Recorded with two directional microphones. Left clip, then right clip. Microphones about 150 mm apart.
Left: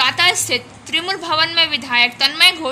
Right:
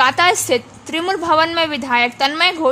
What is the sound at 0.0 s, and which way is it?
A woman's voice, 50° right (ahead or behind).